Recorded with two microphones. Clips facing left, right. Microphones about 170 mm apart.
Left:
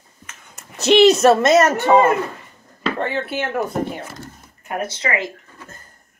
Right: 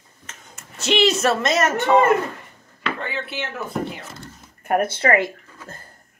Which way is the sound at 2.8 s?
35° left (ahead or behind).